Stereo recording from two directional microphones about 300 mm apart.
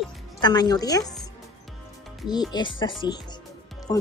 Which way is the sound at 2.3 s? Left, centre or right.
Centre.